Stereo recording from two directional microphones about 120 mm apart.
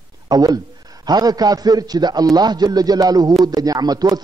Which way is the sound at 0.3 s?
30° right (ahead or behind).